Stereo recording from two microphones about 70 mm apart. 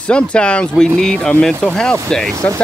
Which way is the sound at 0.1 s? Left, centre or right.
Centre.